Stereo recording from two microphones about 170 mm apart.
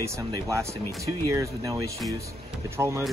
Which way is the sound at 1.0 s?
20° right (ahead or behind).